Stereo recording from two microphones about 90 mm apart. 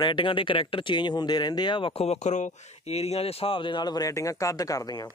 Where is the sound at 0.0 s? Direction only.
65° left (ahead or behind).